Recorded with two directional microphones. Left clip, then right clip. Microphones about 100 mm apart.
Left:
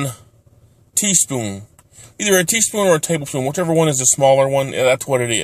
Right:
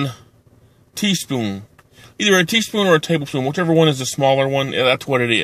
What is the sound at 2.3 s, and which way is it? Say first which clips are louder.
Speech: left 1 dB; 30° left (ahead or behind).